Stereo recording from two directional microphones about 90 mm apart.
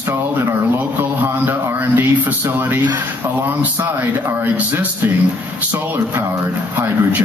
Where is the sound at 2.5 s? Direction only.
20° right (ahead or behind).